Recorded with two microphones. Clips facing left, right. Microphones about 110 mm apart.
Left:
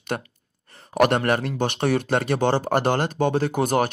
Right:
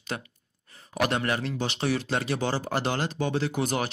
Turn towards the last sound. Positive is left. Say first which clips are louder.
# left 6 dB
turn(degrees=50)  # may be behind; listen again after turning